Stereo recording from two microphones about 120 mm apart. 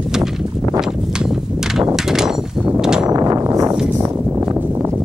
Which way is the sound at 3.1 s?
25° right (ahead or behind).